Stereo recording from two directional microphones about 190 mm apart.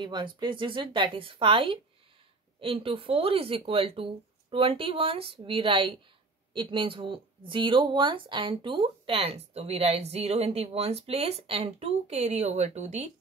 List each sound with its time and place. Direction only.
0.0 s speech: 25° right (ahead or behind)